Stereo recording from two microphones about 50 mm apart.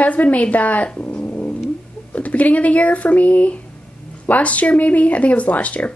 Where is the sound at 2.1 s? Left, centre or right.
Left.